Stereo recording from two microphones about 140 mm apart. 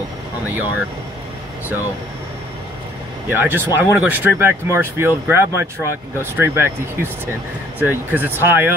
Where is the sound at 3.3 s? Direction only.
15° right (ahead or behind).